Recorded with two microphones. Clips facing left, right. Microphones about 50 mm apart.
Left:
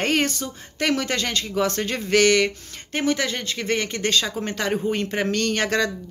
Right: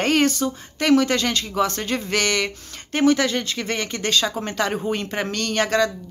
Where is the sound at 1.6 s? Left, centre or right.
Left.